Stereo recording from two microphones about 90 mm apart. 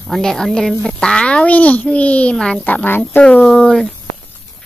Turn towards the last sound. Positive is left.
turn(degrees=5)  # may be behind; listen again after turning